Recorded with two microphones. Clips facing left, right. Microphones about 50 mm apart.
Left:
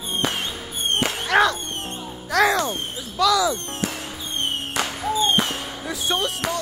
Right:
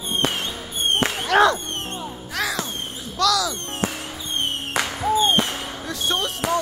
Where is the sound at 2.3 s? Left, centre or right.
Left.